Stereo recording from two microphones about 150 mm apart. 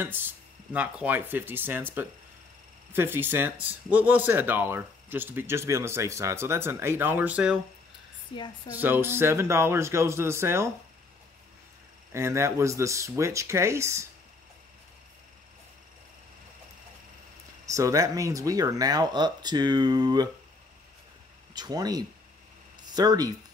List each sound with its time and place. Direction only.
0.0 s speech: 15° right (ahead or behind)
8.3 s a woman's voice: 35° left (ahead or behind)
8.7 s speech: 15° right (ahead or behind)
12.1 s speech: 20° right (ahead or behind)
17.6 s speech: 20° right (ahead or behind)
21.5 s speech: 25° right (ahead or behind)